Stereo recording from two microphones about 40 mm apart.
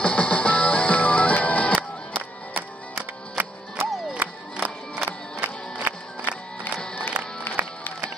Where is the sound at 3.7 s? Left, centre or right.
Right.